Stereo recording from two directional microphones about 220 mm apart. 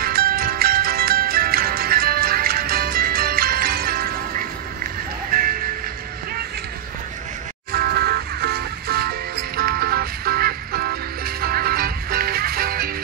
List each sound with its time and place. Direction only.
0.0 s music: 40° right (ahead or behind)
7.7 s music: 45° right (ahead or behind)